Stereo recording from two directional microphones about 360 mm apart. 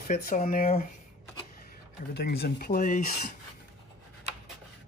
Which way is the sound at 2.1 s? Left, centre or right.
Left.